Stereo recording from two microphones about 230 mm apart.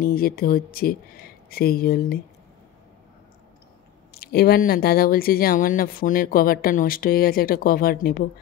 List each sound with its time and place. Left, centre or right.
0.0 s speech: left
4.1 s speech: left